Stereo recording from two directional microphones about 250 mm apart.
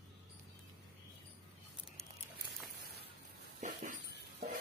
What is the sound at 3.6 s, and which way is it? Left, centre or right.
Dog, right.